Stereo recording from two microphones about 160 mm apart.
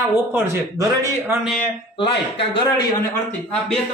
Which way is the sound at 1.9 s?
30° left (ahead or behind).